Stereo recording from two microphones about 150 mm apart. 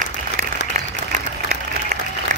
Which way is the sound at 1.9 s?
50° right (ahead or behind).